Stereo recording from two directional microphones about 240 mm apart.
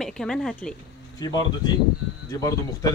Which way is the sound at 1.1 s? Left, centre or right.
Centre.